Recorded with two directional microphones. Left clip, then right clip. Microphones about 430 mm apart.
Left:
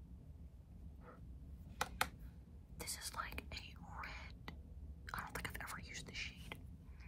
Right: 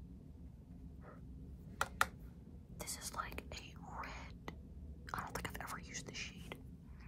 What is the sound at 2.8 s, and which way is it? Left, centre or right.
Whispering, centre.